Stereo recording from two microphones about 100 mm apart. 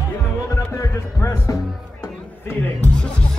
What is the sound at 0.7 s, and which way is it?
Music, 30° left (ahead or behind).